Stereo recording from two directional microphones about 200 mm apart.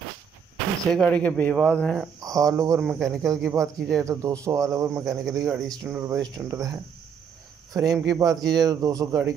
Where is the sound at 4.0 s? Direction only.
15° right (ahead or behind).